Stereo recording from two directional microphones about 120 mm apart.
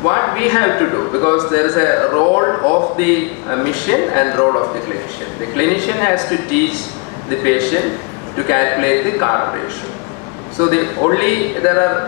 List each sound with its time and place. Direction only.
0.0 s a man's voice: 25° left (ahead or behind)